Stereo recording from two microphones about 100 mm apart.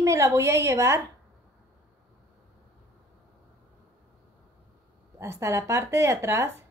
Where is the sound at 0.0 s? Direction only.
30° right (ahead or behind).